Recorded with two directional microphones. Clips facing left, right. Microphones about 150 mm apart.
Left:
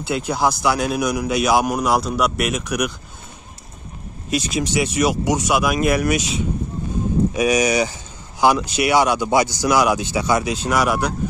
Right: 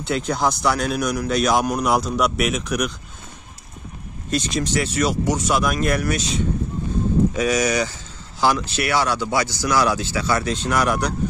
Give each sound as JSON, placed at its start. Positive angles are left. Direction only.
{"t": 0.0, "sound": "speech", "side_deg": 5}
{"t": 4.3, "sound": "speech", "side_deg": 10}